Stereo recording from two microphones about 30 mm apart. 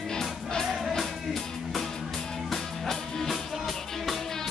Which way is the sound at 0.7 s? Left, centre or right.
Centre.